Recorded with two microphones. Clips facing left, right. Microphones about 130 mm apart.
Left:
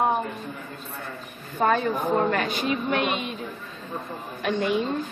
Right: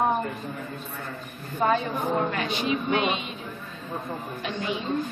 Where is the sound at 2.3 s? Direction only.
50° left (ahead or behind).